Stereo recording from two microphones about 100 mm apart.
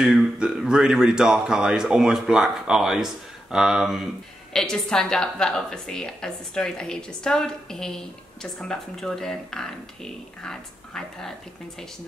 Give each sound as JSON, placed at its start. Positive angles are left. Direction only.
{"t": 0.0, "sound": "a woman's voice", "side_deg": -5}